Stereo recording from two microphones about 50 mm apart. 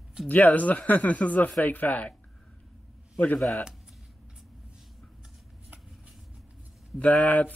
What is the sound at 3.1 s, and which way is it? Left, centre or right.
Speech, left.